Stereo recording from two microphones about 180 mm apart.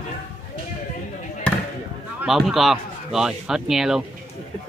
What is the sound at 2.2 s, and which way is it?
Speech, centre (ahead or behind).